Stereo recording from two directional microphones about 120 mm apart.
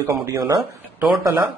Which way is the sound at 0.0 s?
20° right (ahead or behind).